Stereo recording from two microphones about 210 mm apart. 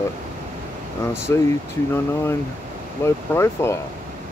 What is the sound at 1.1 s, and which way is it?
Speech, 10° left (ahead or behind).